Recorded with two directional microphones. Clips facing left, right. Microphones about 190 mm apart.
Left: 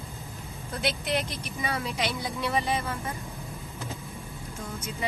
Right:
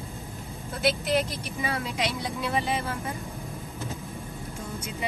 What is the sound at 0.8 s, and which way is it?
Speech, centre (ahead or behind).